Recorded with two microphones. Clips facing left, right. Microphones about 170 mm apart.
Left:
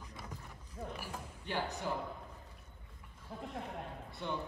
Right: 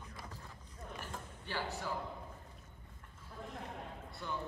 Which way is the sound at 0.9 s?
15° left (ahead or behind).